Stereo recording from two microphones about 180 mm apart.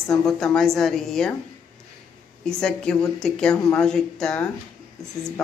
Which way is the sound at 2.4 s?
5° left (ahead or behind).